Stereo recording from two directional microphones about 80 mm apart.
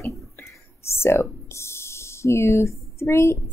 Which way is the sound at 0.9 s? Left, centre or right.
Left.